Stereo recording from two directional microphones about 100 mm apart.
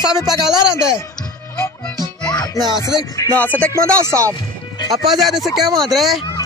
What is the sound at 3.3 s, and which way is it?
Speech, 15° left (ahead or behind).